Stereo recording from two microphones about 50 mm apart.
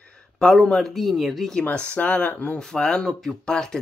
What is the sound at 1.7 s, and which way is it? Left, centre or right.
Speech, left.